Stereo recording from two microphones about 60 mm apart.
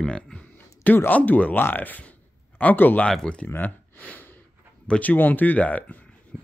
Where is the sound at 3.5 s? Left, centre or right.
Left.